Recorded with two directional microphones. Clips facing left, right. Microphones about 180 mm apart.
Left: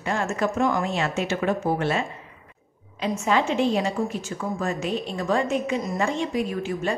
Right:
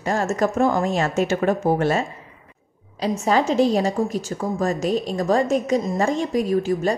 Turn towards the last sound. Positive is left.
turn(degrees=-40)  # may be behind; listen again after turning